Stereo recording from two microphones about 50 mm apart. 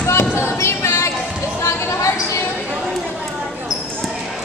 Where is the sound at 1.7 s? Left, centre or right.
Left.